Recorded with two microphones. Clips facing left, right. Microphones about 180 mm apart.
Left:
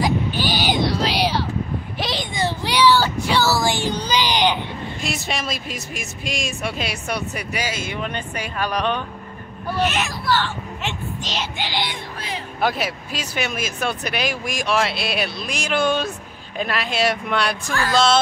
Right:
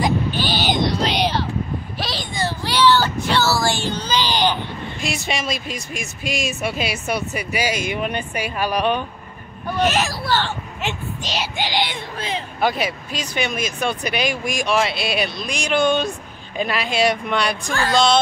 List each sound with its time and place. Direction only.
0.0 s a sound: 10° left (ahead or behind)
2.0 s child singing: 20° left (ahead or behind)
5.0 s speech: centre (ahead or behind)
7.6 s speech: 15° right (ahead or behind)
9.8 s speech: 35° right (ahead or behind)
10.8 s speech: 10° right (ahead or behind); by 12.4 s 25° right (ahead or behind)
12.5 s speech: centre (ahead or behind)